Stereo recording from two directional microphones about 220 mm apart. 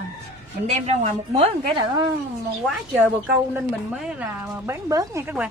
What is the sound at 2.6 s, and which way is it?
A woman's voice, centre (ahead or behind).